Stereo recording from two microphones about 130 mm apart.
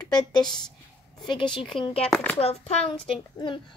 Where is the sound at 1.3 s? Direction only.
40° left (ahead or behind).